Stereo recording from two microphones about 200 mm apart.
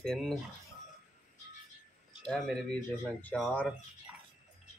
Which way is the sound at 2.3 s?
5° left (ahead or behind).